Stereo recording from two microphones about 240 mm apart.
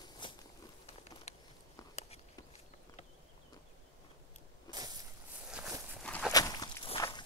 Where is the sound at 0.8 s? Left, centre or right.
Left.